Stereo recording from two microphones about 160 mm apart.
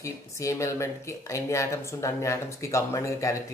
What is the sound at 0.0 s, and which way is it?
Speech, 20° left (ahead or behind).